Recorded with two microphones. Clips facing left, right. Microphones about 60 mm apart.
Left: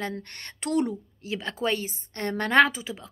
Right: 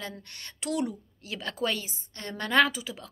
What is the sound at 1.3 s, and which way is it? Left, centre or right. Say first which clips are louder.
Speech: left 3 dB; left.